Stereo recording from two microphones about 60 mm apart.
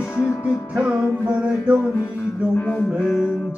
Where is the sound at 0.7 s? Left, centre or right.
Centre.